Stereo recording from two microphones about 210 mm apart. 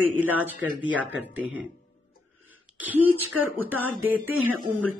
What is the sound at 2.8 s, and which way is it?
Speech, 10° right (ahead or behind).